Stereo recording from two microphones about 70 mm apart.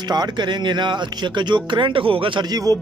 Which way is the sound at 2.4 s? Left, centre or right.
Right.